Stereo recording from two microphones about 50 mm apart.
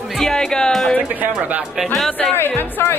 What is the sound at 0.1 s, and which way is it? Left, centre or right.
Speech, centre.